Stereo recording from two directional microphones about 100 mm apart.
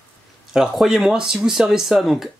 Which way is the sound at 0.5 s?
5° right (ahead or behind).